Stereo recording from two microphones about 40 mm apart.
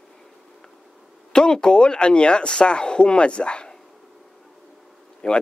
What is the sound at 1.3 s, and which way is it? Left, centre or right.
A man's voice, centre.